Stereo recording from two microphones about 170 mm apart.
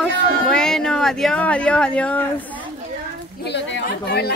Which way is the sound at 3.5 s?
80° left.